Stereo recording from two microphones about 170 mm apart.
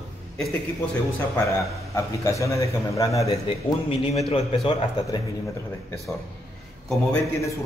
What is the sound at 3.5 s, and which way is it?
A man's voice, 30° left (ahead or behind).